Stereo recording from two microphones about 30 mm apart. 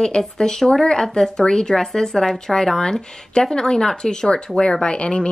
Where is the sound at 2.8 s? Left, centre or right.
Left.